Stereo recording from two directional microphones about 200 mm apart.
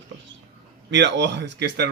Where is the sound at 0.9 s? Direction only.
60° right (ahead or behind).